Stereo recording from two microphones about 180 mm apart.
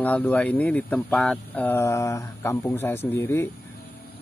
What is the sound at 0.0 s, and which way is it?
Speech, 10° left (ahead or behind).